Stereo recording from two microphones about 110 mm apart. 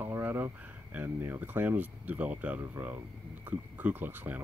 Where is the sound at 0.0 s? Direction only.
20° right (ahead or behind).